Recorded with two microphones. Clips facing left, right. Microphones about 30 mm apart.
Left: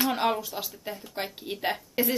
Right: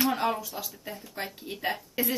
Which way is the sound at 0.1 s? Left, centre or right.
Left.